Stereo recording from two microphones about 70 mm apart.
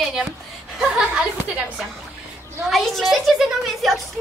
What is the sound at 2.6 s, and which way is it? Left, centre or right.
A woman's voice, centre.